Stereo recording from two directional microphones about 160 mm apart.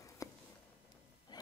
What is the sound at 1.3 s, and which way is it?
Rub, 25° left (ahead or behind).